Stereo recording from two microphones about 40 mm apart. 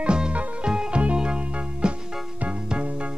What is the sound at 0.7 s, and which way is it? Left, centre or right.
Music, centre.